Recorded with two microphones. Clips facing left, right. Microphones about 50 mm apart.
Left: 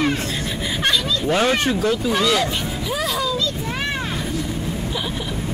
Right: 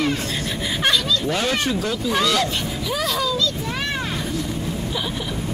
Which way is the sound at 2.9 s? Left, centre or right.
Centre.